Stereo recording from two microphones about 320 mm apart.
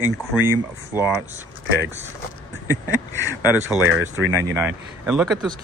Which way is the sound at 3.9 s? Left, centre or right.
Right.